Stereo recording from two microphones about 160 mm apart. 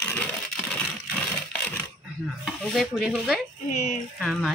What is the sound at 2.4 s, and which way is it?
Stir, centre (ahead or behind).